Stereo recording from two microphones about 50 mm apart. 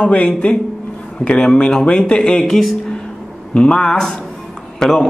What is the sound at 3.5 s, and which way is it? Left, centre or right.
Speech, centre.